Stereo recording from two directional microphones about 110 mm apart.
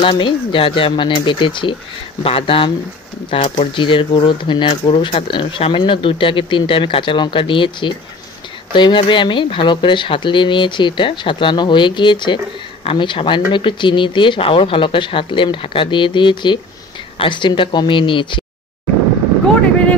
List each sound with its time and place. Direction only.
0.0 s speech: 45° left (ahead or behind)
2.2 s speech: 60° left (ahead or behind)
3.3 s speech: 70° left (ahead or behind)
3.7 s speech: 50° left (ahead or behind)